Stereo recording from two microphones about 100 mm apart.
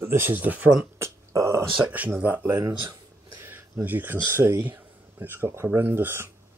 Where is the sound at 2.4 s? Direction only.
25° right (ahead or behind).